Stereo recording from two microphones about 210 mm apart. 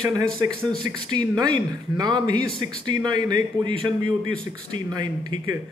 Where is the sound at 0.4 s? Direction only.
20° right (ahead or behind).